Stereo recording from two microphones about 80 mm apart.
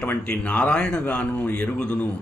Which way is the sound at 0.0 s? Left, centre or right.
Centre.